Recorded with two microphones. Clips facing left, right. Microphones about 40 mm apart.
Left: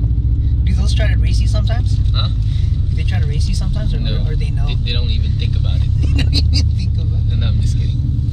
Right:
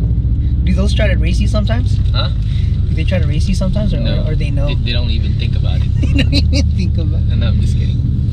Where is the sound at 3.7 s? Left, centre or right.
Right.